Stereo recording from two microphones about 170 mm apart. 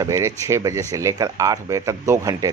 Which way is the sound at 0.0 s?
20° right (ahead or behind).